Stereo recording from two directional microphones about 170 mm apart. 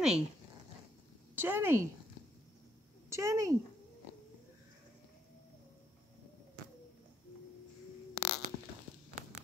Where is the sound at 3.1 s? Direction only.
20° right (ahead or behind).